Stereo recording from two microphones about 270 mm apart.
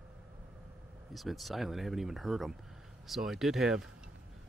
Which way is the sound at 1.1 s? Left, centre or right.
Centre.